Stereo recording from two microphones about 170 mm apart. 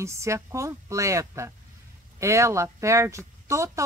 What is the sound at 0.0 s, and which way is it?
A woman's voice, 15° right (ahead or behind).